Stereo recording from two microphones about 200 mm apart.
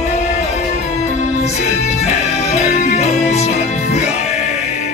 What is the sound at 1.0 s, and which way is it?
Music, 35° left (ahead or behind).